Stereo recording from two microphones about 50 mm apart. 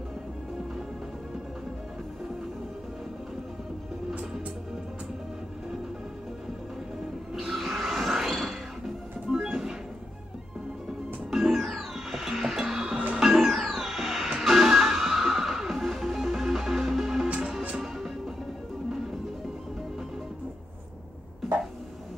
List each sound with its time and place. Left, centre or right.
7.3 s a sound: centre
9.3 s music: centre
11.2 s music: centre
17.3 s music: centre
17.9 s music: centre